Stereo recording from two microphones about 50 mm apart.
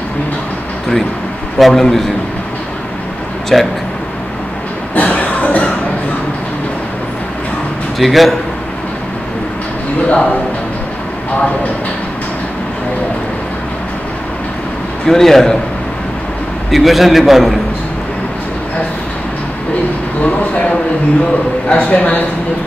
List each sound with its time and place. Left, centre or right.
1.6 s a man's voice: centre
3.5 s a man's voice: centre
4.9 s a sound: left
8.0 s a man's voice: centre
10.0 s a man's voice: centre
15.0 s a man's voice: centre
16.7 s a man's voice: centre
21.6 s a man's voice: left